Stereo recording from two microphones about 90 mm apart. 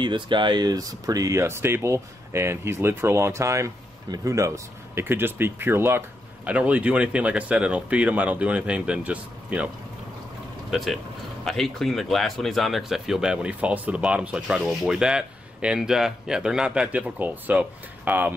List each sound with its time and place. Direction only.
0.0 s speech: 60° right (ahead or behind); by 4.5 s 35° right (ahead or behind)
4.9 s speech: 25° right (ahead or behind)
6.4 s speech: 15° right (ahead or behind)
10.7 s speech: centre (ahead or behind); by 18.3 s 20° right (ahead or behind)